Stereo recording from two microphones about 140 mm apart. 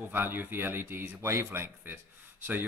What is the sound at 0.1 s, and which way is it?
Speech, 15° right (ahead or behind).